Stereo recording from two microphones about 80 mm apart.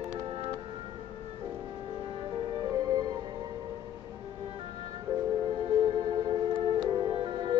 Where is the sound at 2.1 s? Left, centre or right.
Right.